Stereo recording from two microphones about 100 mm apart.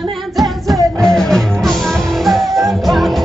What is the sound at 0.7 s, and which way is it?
Music, 35° right (ahead or behind).